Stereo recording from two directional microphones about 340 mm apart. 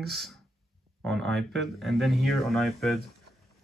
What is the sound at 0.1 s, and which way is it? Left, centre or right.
Speech, centre.